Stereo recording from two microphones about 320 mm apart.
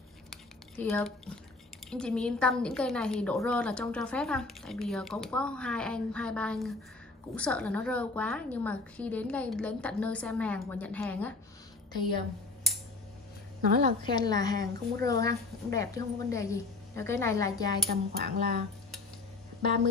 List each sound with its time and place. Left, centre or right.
0.3 s cutlery: centre
1.9 s a woman's voice: centre
13.6 s a woman's voice: right
14.1 s speech: centre
17.8 s speech: right